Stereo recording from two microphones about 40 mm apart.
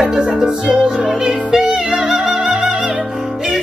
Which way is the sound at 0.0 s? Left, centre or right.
Centre.